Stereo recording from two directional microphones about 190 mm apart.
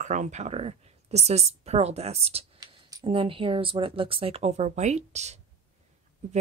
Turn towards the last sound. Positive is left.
turn(degrees=-35)  # may be behind; listen again after turning